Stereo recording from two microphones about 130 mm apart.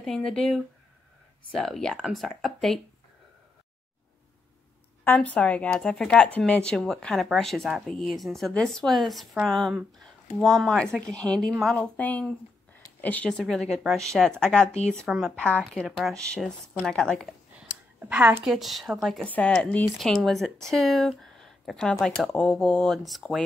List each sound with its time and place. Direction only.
0.0 s speech: 5° left (ahead or behind)
1.6 s speech: 5° left (ahead or behind)
5.0 s speech: 10° left (ahead or behind)
11.8 s speech: 10° left (ahead or behind)
17.6 s a woman's voice: 10° right (ahead or behind)